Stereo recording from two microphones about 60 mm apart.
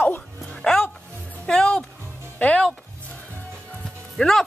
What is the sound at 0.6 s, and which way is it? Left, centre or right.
Music, centre.